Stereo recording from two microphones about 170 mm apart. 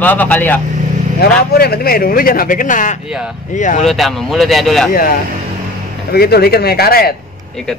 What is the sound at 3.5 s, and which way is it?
Speech, 45° left (ahead or behind).